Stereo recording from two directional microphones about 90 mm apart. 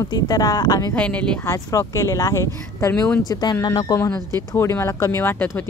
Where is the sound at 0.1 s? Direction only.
50° left (ahead or behind).